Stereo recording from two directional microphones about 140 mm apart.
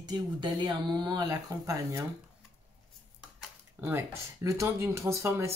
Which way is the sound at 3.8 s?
20° right (ahead or behind).